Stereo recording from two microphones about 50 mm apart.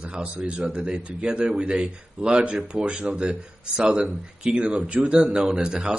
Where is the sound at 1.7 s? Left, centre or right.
Centre.